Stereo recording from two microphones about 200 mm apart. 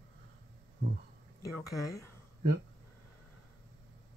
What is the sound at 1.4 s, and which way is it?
Speech, 15° left (ahead or behind).